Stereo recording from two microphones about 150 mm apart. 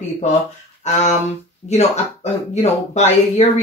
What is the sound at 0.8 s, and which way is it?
Speech, 45° left (ahead or behind).